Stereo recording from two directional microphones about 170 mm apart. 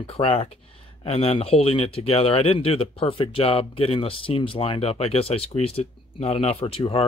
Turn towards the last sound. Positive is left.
turn(degrees=30)  # may be behind; listen again after turning